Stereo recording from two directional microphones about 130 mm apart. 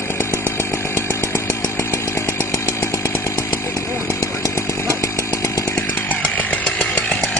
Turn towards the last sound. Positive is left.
turn(degrees=5)  # may be behind; listen again after turning